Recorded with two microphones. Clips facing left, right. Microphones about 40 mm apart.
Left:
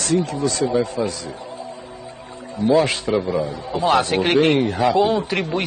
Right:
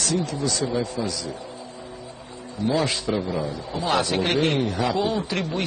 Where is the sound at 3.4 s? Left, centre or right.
Left.